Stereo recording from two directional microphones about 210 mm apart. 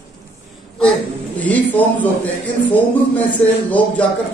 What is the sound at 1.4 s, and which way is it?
Speech, 10° left (ahead or behind).